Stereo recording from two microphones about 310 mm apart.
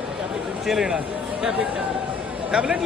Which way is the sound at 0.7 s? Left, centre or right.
Centre.